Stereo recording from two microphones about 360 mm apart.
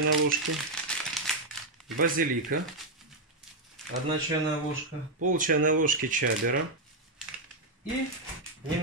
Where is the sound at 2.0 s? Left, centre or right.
Right.